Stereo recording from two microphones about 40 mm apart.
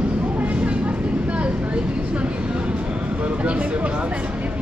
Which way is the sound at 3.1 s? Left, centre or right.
Right.